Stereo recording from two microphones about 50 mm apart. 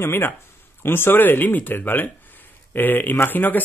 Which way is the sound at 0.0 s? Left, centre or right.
Left.